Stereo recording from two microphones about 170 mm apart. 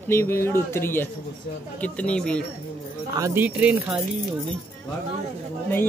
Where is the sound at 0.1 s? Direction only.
15° left (ahead or behind).